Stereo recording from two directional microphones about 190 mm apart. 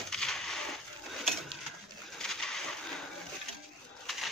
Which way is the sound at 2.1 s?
Centre (ahead or behind).